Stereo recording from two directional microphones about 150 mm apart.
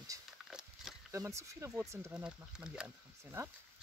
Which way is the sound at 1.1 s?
20° right (ahead or behind).